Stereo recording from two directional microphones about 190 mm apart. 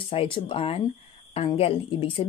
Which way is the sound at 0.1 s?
30° left (ahead or behind).